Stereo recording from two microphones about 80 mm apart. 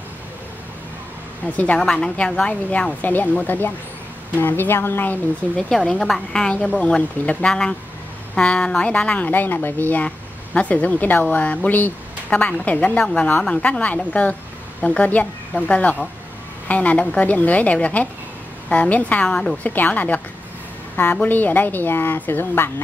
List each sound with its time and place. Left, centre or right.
1.4 s a woman's voice: centre
5.6 s a woman's voice: centre
19.6 s a woman's voice: left